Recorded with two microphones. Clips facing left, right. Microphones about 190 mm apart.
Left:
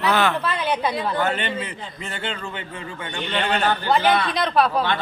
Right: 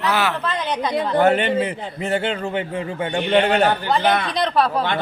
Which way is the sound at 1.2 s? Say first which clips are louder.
Right 8 dB; 60° right (ahead or behind).